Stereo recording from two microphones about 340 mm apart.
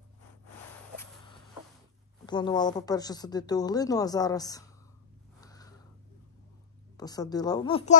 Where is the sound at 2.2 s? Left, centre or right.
Centre.